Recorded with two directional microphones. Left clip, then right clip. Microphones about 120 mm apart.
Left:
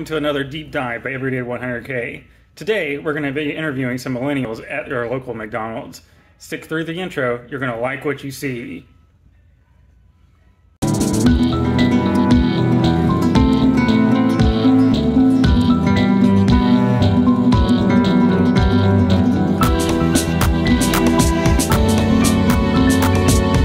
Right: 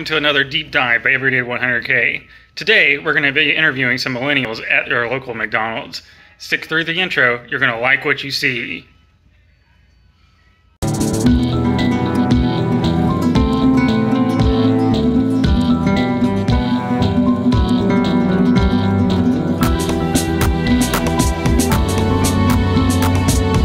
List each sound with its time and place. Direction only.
0.0 s speech: 25° left (ahead or behind)
5.9 s speech: 30° left (ahead or behind)
10.8 s music: centre (ahead or behind)